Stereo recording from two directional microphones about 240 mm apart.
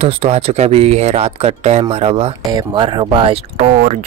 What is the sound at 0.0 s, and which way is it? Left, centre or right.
Speech, right.